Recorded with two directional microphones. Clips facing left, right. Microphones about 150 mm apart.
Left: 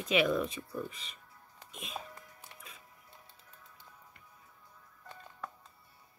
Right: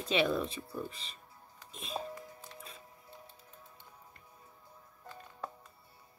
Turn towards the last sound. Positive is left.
turn(degrees=-30)  # may be behind; listen again after turning